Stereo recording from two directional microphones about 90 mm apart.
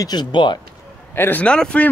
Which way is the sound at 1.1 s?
25° left (ahead or behind).